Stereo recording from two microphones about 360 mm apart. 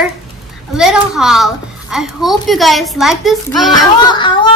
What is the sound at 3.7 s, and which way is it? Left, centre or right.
Speech, centre.